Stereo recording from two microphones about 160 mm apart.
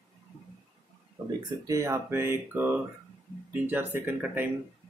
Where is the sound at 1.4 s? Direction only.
25° right (ahead or behind).